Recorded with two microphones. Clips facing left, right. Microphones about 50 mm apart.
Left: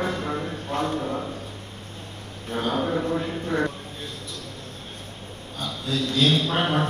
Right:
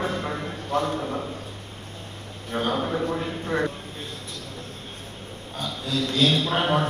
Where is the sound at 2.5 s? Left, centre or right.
Right.